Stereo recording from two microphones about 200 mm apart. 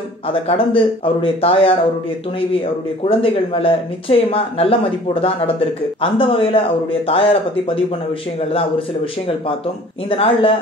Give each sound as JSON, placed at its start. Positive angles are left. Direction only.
{"t": 0.3, "sound": "speech", "side_deg": 25}
{"t": 3.1, "sound": "speech", "side_deg": 25}
{"t": 8.4, "sound": "speech", "side_deg": 30}
{"t": 10.0, "sound": "speech", "side_deg": 25}